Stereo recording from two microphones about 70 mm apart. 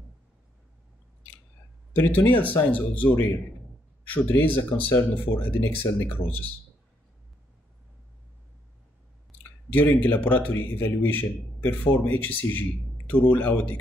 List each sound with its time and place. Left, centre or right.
2.0 s a man's voice: left
9.7 s a man's voice: left